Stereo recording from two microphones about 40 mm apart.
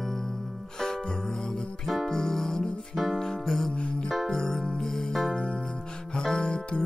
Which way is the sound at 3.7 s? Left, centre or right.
Left.